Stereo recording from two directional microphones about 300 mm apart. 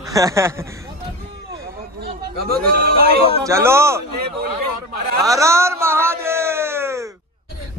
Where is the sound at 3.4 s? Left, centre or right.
Centre.